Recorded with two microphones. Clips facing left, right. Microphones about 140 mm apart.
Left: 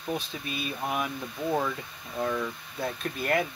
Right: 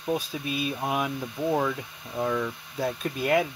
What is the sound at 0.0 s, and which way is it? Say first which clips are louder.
Speech: right 4 dB; 10° right (ahead or behind).